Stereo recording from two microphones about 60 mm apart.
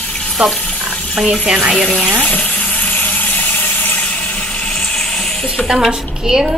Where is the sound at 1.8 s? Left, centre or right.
Centre.